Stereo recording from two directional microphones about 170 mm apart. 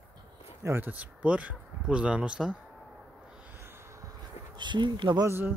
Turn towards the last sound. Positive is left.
turn(degrees=-25)  # may be behind; listen again after turning